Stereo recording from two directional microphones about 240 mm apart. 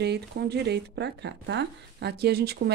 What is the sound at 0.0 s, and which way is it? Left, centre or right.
Speech, right.